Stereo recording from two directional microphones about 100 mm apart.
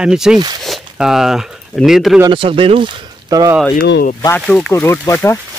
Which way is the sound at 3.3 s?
40° right (ahead or behind).